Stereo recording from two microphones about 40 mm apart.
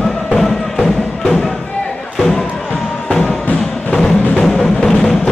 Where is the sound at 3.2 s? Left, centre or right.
Left.